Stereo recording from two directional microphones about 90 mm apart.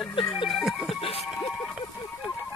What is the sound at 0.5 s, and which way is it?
Music, centre (ahead or behind).